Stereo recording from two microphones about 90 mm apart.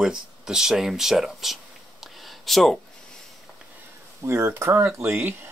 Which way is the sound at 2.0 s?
Centre (ahead or behind).